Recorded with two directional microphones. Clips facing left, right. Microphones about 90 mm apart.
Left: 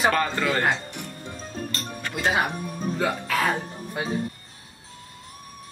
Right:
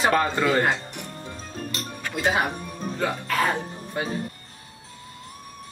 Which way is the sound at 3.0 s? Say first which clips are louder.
Right 1 dB; 5° left (ahead or behind).